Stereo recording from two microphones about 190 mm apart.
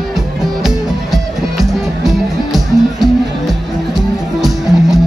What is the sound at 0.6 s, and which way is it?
Music, centre (ahead or behind).